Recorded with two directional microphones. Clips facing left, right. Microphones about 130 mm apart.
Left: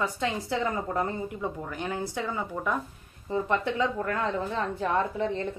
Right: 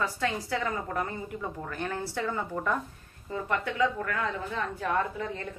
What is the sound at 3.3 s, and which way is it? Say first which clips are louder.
Speech: left 4 dB; 25° left (ahead or behind).